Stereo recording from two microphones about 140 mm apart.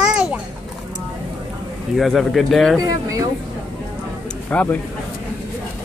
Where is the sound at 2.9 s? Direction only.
25° right (ahead or behind).